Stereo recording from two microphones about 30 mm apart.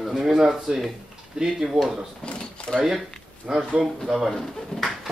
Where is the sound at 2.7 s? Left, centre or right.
Left.